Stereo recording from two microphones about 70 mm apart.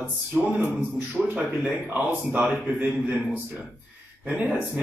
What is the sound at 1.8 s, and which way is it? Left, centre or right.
A man's voice, right.